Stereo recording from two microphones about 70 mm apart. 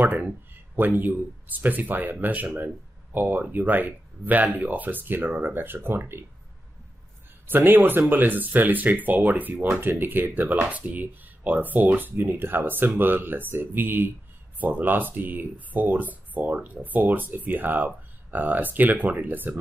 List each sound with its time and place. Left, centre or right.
0.0 s speech: right
7.4 s speech: right